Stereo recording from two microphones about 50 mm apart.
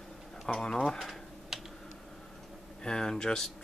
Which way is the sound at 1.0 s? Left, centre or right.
Centre.